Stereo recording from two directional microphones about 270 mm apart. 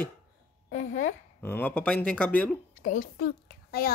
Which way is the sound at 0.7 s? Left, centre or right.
Left.